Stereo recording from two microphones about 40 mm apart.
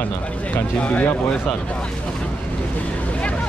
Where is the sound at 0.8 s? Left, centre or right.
Left.